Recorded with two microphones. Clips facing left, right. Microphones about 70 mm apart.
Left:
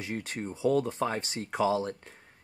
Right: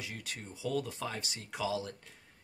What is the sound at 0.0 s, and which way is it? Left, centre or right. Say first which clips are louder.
Speech: left 9 dB; left.